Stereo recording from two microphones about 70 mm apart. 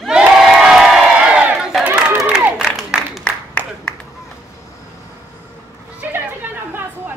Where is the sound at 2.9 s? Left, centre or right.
Centre.